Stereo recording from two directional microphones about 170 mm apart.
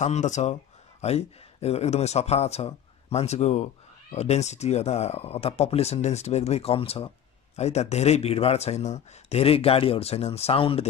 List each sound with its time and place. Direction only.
0.0 s a man's voice: 45° left (ahead or behind)